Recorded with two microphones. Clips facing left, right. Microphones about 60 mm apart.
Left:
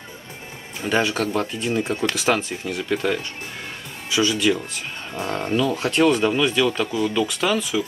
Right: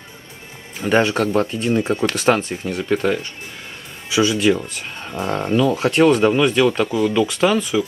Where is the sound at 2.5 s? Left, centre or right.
Right.